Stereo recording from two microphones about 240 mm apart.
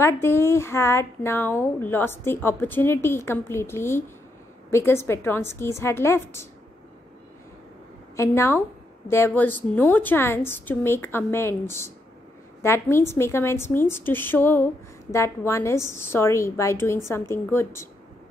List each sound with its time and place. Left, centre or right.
0.0 s speech: centre
8.2 s speech: centre